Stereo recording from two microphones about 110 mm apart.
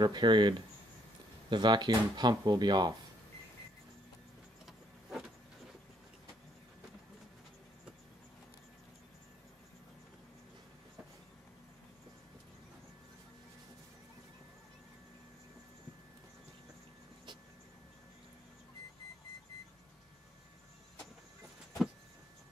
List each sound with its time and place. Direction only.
0.0 s speech: 45° right (ahead or behind)